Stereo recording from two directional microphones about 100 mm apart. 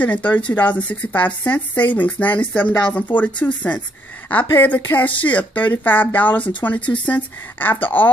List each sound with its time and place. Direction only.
0.0 s speech: 15° left (ahead or behind)